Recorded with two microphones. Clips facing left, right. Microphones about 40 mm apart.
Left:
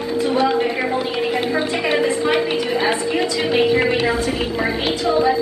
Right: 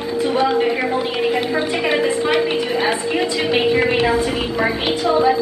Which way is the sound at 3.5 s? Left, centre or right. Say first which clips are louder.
Left 1 dB; centre.